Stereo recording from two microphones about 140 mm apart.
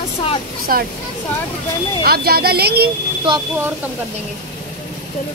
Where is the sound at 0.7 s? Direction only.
90° right.